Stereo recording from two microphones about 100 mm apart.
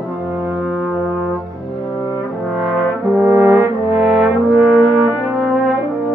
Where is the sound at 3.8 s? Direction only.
5° right (ahead or behind).